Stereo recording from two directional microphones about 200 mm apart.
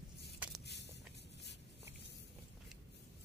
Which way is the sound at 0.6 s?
60° left (ahead or behind).